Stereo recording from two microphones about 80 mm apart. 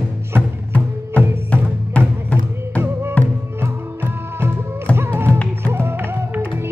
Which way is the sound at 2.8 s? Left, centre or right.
Right.